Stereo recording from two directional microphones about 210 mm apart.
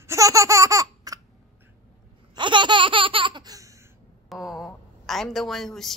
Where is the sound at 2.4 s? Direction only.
20° right (ahead or behind).